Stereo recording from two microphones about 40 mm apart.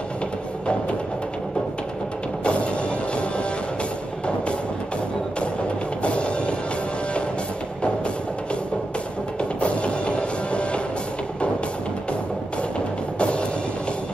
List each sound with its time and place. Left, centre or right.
2.4 s music: left
6.0 s music: left
9.4 s music: left
12.7 s music: left